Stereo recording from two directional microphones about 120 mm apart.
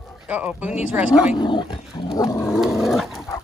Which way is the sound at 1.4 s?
40° left (ahead or behind).